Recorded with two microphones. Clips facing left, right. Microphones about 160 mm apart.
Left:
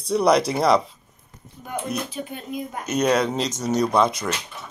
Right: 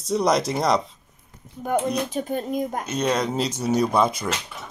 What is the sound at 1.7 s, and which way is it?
Speech, 40° right (ahead or behind).